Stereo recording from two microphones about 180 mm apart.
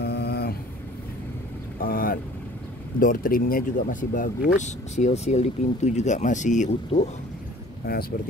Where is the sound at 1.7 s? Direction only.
55° left (ahead or behind).